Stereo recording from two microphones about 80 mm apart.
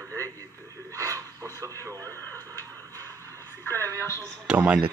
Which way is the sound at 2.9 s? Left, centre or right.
Left.